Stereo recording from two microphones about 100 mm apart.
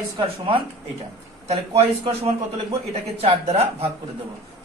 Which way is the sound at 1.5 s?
90° right.